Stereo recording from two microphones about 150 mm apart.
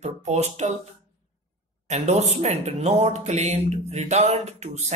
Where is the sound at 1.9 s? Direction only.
50° right (ahead or behind).